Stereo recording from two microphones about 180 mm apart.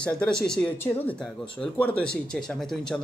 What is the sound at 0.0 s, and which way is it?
Speech, 5° left (ahead or behind).